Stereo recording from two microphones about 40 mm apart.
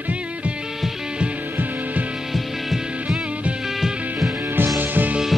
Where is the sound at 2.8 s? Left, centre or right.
Right.